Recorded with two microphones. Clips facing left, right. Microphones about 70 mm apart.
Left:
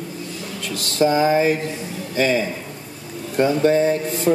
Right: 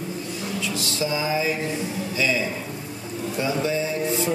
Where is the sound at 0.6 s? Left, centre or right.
Left.